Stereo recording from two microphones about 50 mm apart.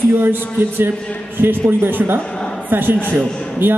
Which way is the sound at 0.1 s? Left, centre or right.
Right.